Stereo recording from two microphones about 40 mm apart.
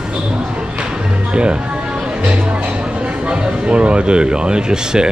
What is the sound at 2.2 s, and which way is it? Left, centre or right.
Speech, right.